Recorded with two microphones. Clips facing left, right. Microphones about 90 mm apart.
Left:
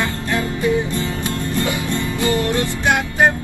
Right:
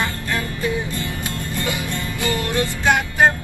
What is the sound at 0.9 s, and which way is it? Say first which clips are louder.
Music: left 5 dB; 20° left (ahead or behind).